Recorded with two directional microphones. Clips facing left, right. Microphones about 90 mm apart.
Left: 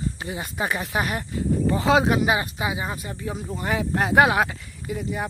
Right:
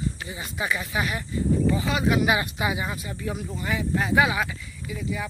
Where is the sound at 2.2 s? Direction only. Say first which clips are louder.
Even; 25° left (ahead or behind).